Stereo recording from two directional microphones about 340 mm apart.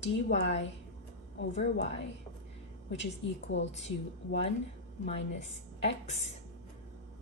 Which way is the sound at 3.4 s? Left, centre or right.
Left.